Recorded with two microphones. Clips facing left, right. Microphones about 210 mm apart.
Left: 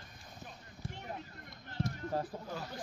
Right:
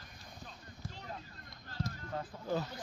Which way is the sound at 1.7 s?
30° left (ahead or behind).